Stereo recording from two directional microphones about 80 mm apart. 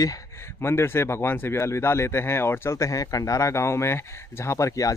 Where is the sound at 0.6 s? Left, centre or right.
Left.